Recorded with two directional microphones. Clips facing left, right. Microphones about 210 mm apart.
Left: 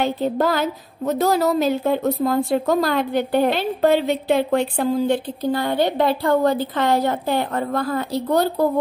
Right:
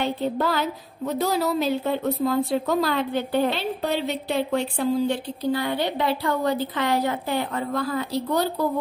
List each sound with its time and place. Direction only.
0.0 s a woman's voice: 45° left (ahead or behind)